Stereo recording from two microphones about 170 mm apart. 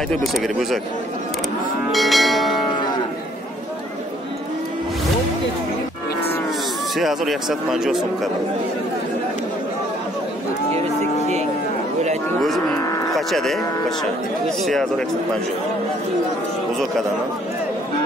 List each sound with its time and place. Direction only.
0.1 s speech: centre (ahead or behind)
1.9 s speech: centre (ahead or behind)
7.0 s speech: centre (ahead or behind)
13.1 s speech: centre (ahead or behind)